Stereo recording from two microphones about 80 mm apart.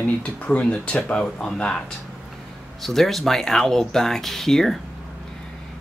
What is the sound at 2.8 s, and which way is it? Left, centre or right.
Speech, centre.